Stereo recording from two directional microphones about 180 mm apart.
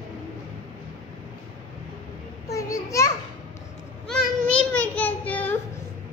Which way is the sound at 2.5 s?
15° left (ahead or behind).